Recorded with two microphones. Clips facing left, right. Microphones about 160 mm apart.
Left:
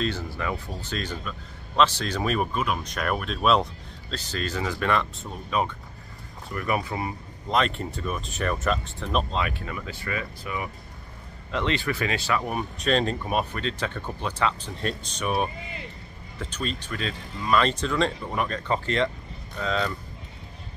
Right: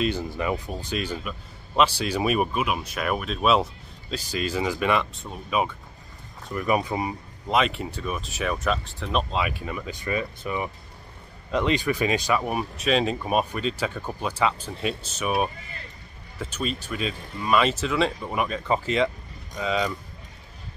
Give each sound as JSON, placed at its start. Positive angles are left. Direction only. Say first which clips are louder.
{"t": 0.0, "sound": "speech", "louder": "right 3 dB", "side_deg": -15}
{"t": 6.5, "sound": "speech", "louder": "right 3 dB", "side_deg": -20}
{"t": 7.4, "sound": "speech", "louder": "right 1 dB", "side_deg": -5}
{"t": 11.5, "sound": "speech", "louder": "right 3 dB", "side_deg": -15}